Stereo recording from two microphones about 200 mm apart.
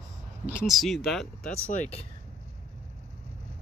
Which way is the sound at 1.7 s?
35° left (ahead or behind).